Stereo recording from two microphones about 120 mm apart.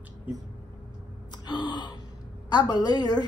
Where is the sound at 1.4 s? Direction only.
40° left (ahead or behind).